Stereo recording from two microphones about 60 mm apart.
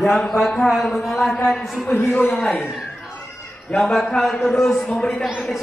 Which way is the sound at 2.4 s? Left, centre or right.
Left.